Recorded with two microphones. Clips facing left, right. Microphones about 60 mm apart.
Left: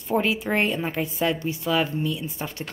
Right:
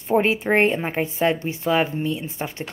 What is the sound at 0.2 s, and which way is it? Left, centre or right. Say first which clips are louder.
A woman's voice: right 5 dB; right.